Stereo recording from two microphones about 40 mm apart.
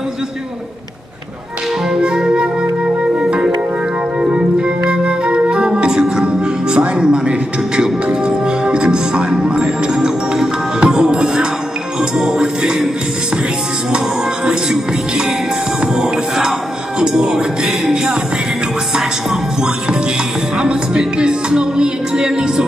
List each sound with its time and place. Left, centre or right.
2.0 s music: centre
4.3 s organ: right
9.9 s music: centre
13.9 s music: centre
17.0 s music: centre
20.5 s music: right